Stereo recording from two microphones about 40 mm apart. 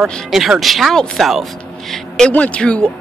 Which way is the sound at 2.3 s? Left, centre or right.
Left.